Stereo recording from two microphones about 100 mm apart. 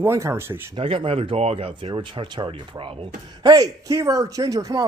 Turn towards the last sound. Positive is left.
turn(degrees=-35)  # may be behind; listen again after turning